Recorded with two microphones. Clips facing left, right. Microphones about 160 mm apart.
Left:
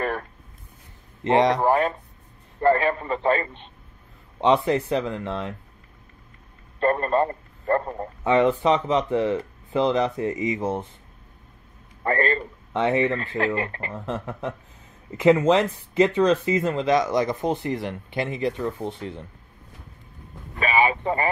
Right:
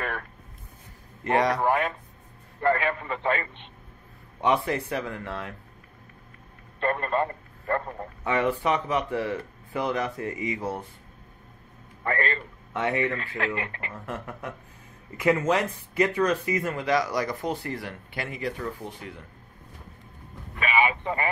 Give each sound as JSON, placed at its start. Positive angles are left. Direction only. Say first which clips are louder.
{"t": 1.2, "sound": "speech", "louder": "left 4 dB", "side_deg": 25}
{"t": 4.4, "sound": "speech", "louder": "left 5 dB", "side_deg": 20}
{"t": 6.8, "sound": "a man's voice", "louder": "left 5 dB", "side_deg": 35}
{"t": 8.2, "sound": "speech", "louder": "left 6 dB", "side_deg": 20}
{"t": 12.0, "sound": "a man's voice", "louder": "left 5 dB", "side_deg": 35}
{"t": 20.5, "sound": "vehicle", "louder": "left 3 dB", "side_deg": 35}